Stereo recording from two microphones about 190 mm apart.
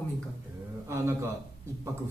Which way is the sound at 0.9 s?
15° right (ahead or behind).